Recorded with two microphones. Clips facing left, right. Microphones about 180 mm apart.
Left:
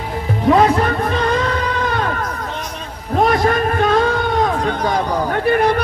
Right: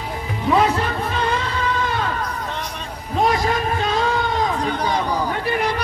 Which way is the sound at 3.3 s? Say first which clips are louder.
Left 4 dB; 55° left (ahead or behind).